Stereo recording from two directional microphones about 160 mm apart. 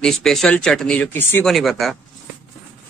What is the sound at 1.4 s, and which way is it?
Speech, centre (ahead or behind).